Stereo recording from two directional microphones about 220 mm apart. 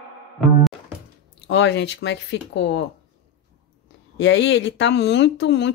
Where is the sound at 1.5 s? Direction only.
50° left (ahead or behind).